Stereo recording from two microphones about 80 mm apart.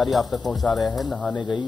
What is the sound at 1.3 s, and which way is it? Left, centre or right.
Speech, left.